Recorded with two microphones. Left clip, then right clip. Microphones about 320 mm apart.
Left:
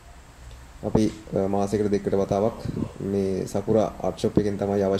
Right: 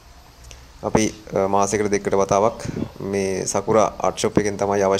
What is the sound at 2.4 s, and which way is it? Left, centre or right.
Speech, right.